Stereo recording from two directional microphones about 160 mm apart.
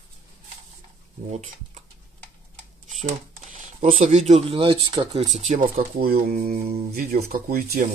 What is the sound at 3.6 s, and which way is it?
Speech, 50° right (ahead or behind).